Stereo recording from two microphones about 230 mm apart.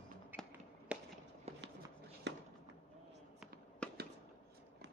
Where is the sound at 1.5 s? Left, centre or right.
Right.